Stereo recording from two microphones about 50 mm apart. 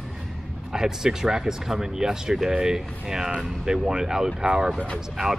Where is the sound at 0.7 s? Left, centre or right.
Centre.